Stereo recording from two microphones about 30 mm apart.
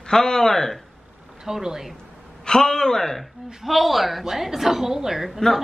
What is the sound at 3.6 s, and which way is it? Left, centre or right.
A woman's voice, centre.